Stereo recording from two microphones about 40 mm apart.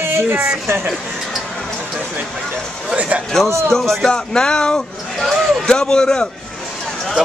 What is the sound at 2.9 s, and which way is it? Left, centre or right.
Speech, right.